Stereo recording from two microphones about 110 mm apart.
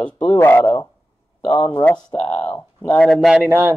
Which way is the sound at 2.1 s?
65° left (ahead or behind).